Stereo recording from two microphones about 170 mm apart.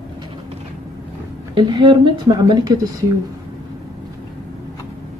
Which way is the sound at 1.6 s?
30° right (ahead or behind).